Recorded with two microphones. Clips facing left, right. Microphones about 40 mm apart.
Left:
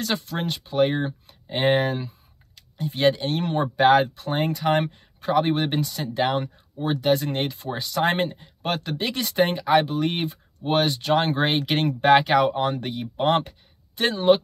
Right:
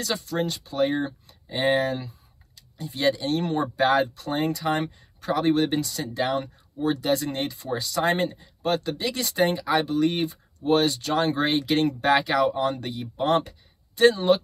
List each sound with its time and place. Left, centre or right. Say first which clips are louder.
0.0 s speech: even; left